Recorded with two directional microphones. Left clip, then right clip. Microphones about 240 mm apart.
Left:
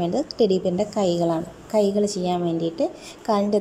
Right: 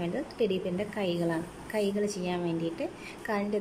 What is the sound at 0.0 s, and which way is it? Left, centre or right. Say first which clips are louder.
A woman's voice: left 9 dB; left.